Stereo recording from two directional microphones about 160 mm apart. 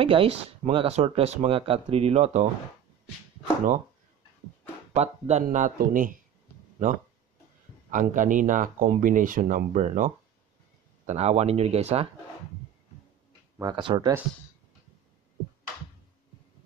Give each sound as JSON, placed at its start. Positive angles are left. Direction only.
{"t": 0.0, "sound": "speech", "side_deg": -35}
{"t": 4.9, "sound": "speech", "side_deg": -45}
{"t": 5.4, "sound": "speech", "side_deg": -55}
{"t": 7.9, "sound": "speech", "side_deg": -55}
{"t": 13.6, "sound": "speech", "side_deg": -25}